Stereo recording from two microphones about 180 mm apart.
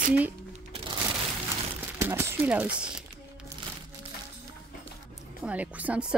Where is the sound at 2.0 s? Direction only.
15° right (ahead or behind).